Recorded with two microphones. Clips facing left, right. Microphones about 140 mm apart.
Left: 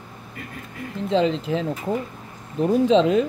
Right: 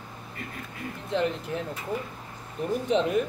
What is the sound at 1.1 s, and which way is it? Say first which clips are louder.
Speech: left 7 dB; 90° left.